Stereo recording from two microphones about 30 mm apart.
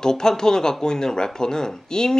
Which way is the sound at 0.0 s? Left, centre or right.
Left.